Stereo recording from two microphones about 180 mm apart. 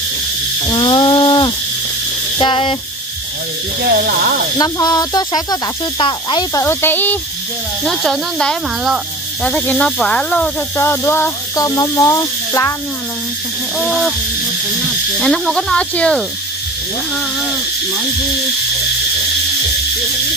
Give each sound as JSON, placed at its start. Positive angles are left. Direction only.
{"t": 0.7, "sound": "a sound", "side_deg": 25}
{"t": 2.3, "sound": "speech", "side_deg": 30}
{"t": 4.0, "sound": "speech", "side_deg": -55}
{"t": 4.6, "sound": "speech", "side_deg": 20}
{"t": 6.6, "sound": "speech", "side_deg": 10}
{"t": 13.7, "sound": "speech", "side_deg": 5}
{"t": 15.1, "sound": "speech", "side_deg": 0}